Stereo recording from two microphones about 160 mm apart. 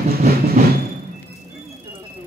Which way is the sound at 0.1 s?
75° right (ahead or behind).